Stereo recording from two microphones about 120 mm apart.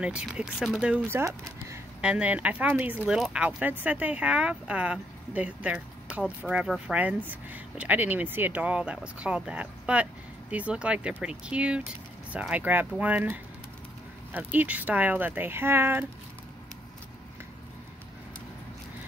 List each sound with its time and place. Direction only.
0.0 s speech: 10° right (ahead or behind)
1.0 s speech: 25° right (ahead or behind)
2.0 s speech: 10° right (ahead or behind)